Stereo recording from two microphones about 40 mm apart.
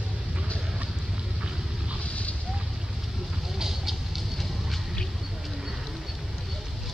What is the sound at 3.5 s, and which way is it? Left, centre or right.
Vehicle, centre.